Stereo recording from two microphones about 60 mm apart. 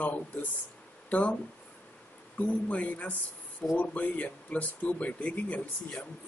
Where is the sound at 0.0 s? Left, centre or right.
Left.